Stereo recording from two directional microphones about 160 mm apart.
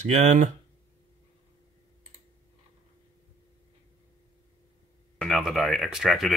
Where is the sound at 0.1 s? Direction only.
45° right (ahead or behind).